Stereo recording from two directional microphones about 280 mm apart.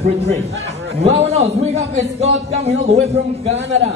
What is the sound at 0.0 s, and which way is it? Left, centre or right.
Speech, right.